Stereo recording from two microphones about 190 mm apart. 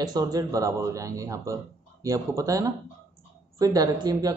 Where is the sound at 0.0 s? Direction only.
20° right (ahead or behind).